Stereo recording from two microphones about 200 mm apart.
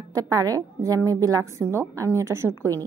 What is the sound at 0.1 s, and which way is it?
A woman's voice, 15° right (ahead or behind).